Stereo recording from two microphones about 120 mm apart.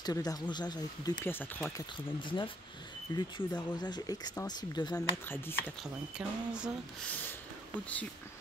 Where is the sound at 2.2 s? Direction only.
40° left (ahead or behind).